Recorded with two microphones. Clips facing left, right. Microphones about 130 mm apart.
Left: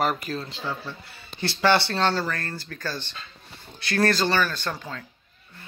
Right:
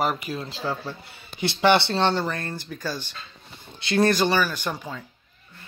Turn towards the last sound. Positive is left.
turn(degrees=-10)  # may be behind; listen again after turning